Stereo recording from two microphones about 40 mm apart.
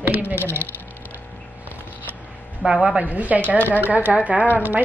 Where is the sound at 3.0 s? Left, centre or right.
Right.